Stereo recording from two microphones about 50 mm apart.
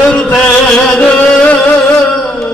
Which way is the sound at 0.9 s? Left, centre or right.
Left.